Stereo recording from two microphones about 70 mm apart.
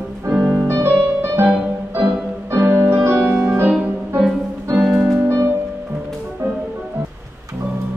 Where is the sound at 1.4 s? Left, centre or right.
Right.